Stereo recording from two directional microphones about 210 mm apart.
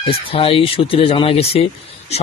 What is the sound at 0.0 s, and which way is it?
Speech, 25° left (ahead or behind).